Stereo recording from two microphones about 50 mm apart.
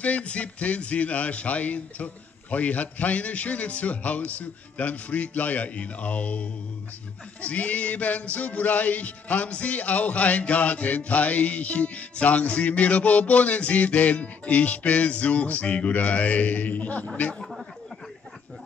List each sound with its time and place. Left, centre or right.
0.0 s music: left